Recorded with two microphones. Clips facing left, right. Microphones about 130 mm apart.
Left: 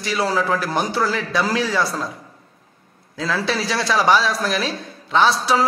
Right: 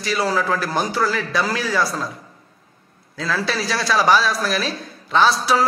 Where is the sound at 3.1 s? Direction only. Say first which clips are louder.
Left 1 dB; 20° left (ahead or behind).